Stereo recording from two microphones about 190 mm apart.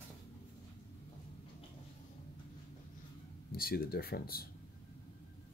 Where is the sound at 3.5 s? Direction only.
50° left (ahead or behind).